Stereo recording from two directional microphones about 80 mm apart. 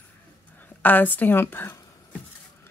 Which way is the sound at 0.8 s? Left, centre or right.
Left.